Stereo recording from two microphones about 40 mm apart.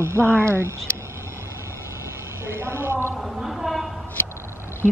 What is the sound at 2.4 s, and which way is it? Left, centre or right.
Speech, right.